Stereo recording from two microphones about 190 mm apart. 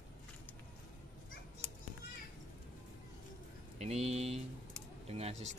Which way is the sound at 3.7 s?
35° right (ahead or behind).